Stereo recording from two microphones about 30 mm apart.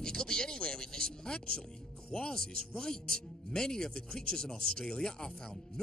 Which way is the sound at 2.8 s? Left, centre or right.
Left.